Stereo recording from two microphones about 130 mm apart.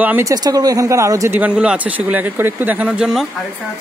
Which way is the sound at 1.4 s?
10° right (ahead or behind).